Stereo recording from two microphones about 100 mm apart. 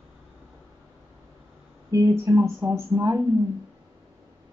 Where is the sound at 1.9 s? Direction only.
30° right (ahead or behind).